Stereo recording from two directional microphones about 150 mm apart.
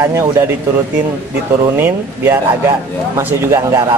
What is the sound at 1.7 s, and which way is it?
A man's voice, 15° right (ahead or behind).